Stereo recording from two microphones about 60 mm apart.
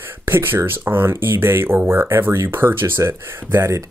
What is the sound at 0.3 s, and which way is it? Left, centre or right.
Speech, right.